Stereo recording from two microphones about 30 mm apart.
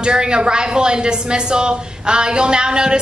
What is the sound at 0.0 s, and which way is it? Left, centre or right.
A woman's voice, right.